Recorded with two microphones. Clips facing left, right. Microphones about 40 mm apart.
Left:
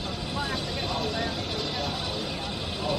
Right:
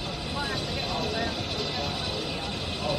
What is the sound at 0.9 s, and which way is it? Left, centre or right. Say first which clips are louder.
Vehicle: right 1 dB; centre.